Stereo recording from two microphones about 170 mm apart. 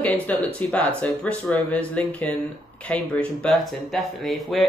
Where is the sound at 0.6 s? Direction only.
10° left (ahead or behind).